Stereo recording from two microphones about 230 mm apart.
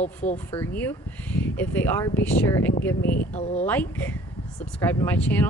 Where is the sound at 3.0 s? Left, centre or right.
Left.